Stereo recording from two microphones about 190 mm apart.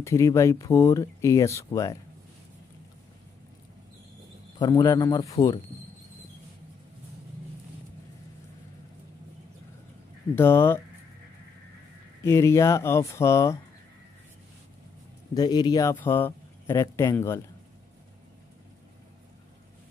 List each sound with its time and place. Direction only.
0.0 s speech: 15° left (ahead or behind)
4.6 s speech: 25° left (ahead or behind)
10.3 s speech: 10° left (ahead or behind)
12.2 s speech: 15° left (ahead or behind)
15.3 s speech: 20° left (ahead or behind)